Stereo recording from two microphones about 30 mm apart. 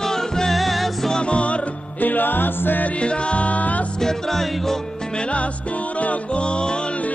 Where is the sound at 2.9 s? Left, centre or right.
Left.